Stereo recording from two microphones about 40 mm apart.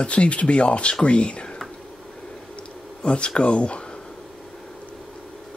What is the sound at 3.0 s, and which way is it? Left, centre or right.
Speech, left.